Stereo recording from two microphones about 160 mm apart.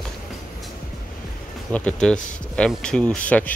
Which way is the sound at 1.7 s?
10° left (ahead or behind).